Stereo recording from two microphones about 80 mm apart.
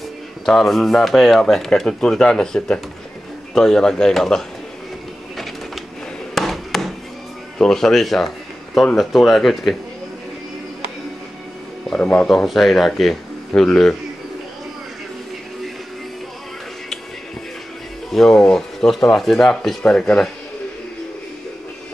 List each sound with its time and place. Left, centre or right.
0.5 s speech: centre
6.3 s a sound: centre
7.5 s speech: centre
12.0 s speech: centre
12.3 s speech: centre
18.1 s speech: centre
19.9 s speech: centre